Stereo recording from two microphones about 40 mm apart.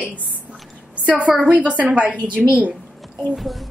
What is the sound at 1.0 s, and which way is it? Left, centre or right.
A woman's voice, right.